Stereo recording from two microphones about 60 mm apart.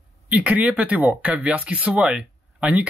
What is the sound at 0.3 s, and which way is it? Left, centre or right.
Speech, right.